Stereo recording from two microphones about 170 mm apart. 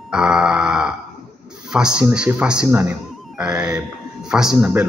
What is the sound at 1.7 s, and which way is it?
A man's voice, 5° right (ahead or behind).